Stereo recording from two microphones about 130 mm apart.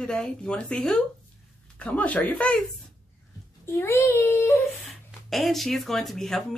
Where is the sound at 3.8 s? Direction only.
15° left (ahead or behind).